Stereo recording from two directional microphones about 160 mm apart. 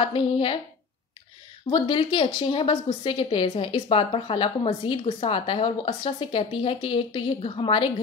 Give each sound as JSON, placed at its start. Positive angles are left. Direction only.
{"t": 0.0, "sound": "a woman's voice", "side_deg": 35}
{"t": 1.7, "sound": "a woman's voice", "side_deg": 30}